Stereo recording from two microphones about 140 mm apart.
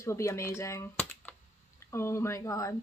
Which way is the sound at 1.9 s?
20° left (ahead or behind).